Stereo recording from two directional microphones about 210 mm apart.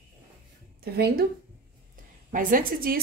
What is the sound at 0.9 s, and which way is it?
Speech, 50° right (ahead or behind).